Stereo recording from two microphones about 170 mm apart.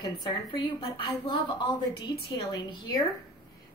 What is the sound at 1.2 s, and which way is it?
A woman's voice, 25° left (ahead or behind).